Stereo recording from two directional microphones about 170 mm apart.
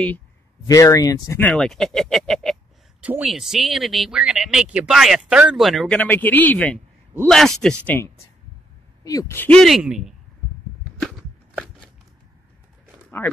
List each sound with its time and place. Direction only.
0.7 s speech: 20° left (ahead or behind)
1.4 s speech: 5° left (ahead or behind)
10.8 s a sound: 5° left (ahead or behind)
13.2 s speech: 10° left (ahead or behind)